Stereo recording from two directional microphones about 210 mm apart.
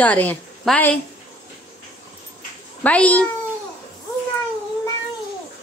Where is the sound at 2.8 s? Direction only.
5° left (ahead or behind).